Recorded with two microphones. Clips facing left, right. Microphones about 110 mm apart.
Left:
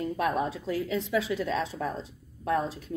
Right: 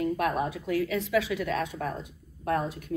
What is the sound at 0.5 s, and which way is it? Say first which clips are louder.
A woman's voice: right 2 dB; 25° left (ahead or behind).